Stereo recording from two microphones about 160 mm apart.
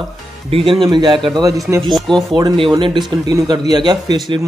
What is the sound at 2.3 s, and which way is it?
Speech, 30° right (ahead or behind).